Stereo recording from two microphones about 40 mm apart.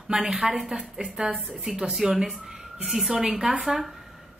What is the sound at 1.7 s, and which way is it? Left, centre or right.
A woman's voice, centre.